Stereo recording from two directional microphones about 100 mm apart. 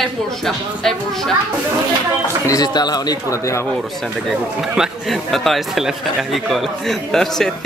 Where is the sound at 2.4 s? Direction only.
40° left (ahead or behind).